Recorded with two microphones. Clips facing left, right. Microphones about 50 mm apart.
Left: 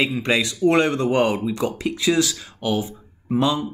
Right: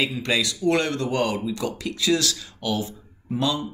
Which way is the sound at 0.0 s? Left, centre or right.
Left.